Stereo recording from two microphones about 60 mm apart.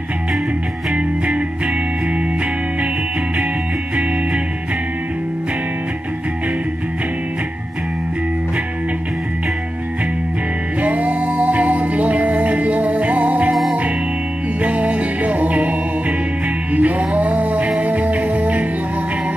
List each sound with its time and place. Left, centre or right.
0.9 s music: right
10.8 s music: right
14.6 s music: right